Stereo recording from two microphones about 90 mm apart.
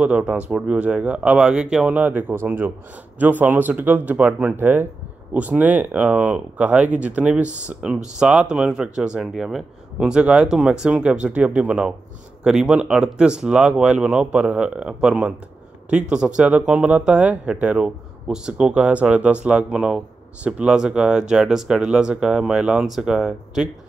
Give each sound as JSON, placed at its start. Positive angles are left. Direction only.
{"t": 0.0, "sound": "speech", "side_deg": -10}